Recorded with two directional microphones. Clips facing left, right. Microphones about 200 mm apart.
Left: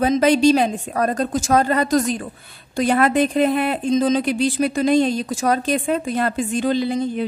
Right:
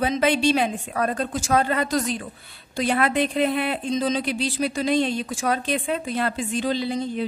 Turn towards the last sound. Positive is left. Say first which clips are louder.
# left 5 dB
turn(degrees=50)  # may be behind; listen again after turning